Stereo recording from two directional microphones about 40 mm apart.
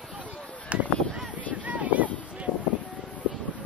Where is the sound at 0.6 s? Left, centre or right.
Right.